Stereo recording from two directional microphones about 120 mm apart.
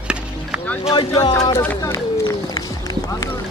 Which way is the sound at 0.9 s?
35° left (ahead or behind).